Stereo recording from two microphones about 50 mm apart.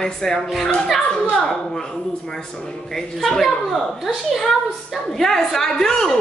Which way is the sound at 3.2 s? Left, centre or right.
Centre.